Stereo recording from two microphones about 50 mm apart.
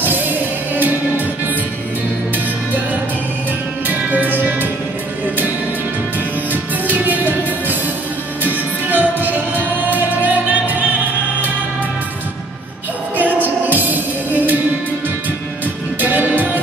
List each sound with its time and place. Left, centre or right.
0.0 s music: right
6.5 s music: right
13.2 s music: right
16.0 s music: right